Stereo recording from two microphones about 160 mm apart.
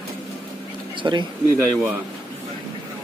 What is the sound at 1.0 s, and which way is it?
Speech, 25° right (ahead or behind).